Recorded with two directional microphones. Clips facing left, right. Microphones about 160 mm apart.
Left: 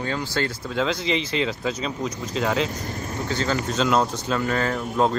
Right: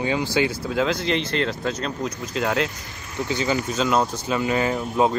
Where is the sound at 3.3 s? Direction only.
15° right (ahead or behind).